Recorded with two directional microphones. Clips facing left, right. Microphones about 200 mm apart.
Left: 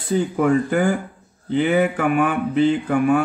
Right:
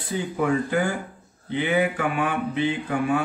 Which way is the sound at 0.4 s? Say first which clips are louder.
Left 3 dB; 50° left (ahead or behind).